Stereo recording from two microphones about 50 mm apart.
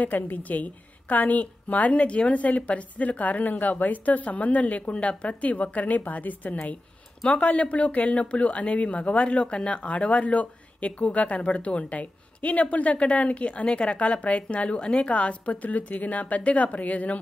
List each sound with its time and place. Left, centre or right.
0.0 s a woman's voice: left